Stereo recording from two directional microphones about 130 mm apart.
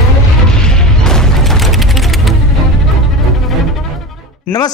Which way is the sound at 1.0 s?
5° left (ahead or behind).